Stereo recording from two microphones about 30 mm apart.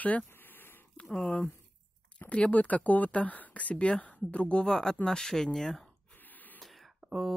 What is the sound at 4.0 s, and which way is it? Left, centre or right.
Speech, left.